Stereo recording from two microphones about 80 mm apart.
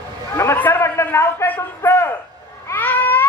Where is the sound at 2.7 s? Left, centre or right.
Left.